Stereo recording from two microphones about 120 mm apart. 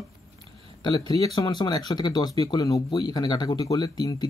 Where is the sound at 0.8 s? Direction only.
35° left (ahead or behind).